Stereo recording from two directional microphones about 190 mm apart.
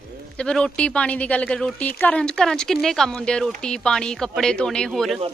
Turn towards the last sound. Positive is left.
turn(degrees=0)  # may be behind; listen again after turning